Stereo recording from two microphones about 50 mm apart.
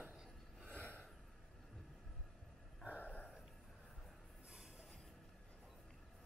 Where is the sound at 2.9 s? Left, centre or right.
Left.